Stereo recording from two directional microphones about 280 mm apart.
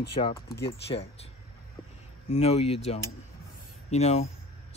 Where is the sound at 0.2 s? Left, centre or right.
Left.